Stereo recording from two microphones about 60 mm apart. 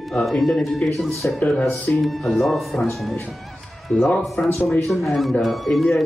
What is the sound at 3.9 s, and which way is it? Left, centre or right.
Speech, left.